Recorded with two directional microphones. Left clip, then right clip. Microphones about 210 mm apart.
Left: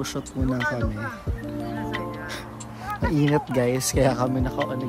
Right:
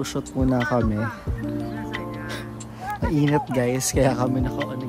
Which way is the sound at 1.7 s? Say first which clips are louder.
Left 1 dB; centre (ahead or behind).